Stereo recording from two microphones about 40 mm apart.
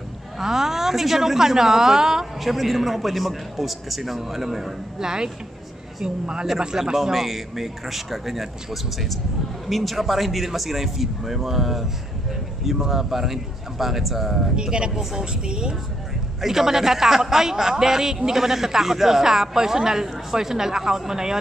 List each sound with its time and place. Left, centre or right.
0.4 s a man's voice: centre
2.4 s a man's voice: centre
14.5 s speech: right
16.3 s a man's voice: centre